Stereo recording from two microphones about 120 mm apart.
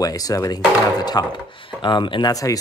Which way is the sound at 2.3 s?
30° left (ahead or behind).